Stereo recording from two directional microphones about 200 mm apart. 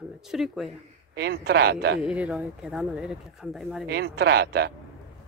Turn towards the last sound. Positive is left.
turn(degrees=-55)  # may be behind; listen again after turning